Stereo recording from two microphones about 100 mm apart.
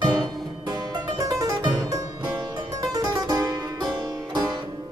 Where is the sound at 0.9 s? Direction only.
40° right (ahead or behind).